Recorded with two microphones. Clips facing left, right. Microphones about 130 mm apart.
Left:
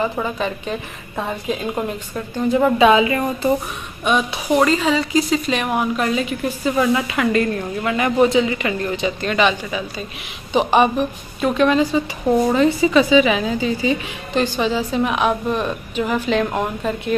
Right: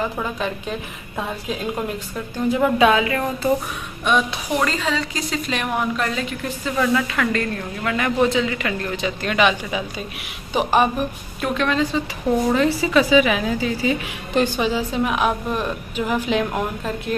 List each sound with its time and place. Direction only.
0.0 s a woman's voice: 5° left (ahead or behind)
3.0 s a woman's voice: 15° left (ahead or behind); by 10.0 s 15° right (ahead or behind)
10.5 s a woman's voice: 5° right (ahead or behind)
11.4 s a woman's voice: 5° left (ahead or behind)
14.3 s a woman's voice: 10° right (ahead or behind)